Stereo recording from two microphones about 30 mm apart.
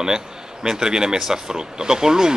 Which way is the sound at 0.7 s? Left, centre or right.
Right.